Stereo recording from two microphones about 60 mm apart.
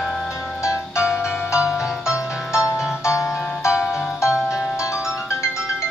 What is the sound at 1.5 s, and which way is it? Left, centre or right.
Music, centre.